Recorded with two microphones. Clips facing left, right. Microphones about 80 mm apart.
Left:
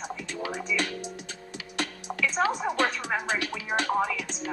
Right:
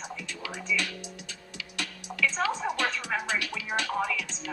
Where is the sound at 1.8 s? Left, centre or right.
Left.